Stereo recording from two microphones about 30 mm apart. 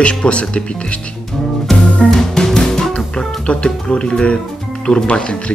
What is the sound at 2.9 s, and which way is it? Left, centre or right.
Music, left.